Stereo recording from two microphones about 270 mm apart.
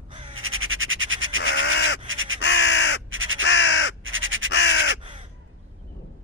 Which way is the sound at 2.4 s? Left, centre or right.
Left.